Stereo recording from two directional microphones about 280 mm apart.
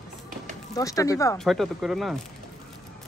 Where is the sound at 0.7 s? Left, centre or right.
Centre.